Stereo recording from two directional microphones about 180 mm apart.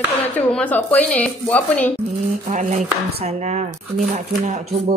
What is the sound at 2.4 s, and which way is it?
Speech, 40° right (ahead or behind).